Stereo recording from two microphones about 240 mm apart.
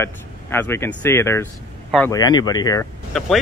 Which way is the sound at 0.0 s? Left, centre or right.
Centre.